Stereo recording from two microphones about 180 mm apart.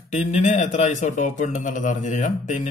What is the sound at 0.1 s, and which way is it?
A man's voice, 40° left (ahead or behind).